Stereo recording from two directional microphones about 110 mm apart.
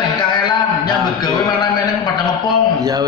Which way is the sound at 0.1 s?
45° left (ahead or behind).